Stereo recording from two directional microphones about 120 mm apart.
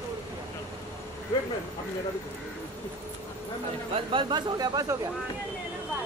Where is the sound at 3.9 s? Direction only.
40° right (ahead or behind).